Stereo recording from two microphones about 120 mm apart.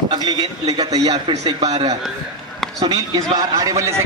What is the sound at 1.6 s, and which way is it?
Speech, 65° right (ahead or behind).